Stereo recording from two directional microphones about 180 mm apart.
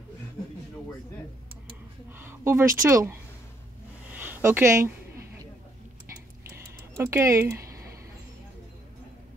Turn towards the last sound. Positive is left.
turn(degrees=-15)  # may be behind; listen again after turning